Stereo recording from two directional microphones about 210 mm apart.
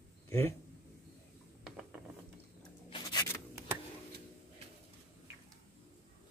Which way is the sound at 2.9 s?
20° left (ahead or behind).